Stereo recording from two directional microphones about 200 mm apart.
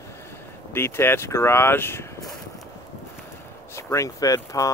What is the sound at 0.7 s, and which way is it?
Speech, 10° left (ahead or behind).